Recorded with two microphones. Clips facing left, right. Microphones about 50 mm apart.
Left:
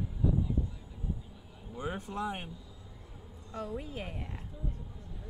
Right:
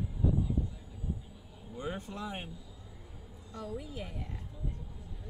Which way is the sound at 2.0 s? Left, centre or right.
Left.